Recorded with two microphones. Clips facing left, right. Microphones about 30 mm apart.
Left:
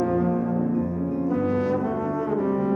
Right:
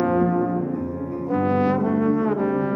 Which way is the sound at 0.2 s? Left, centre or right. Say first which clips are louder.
Right 3 dB; centre.